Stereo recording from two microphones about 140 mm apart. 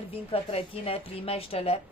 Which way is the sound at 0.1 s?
45° left (ahead or behind).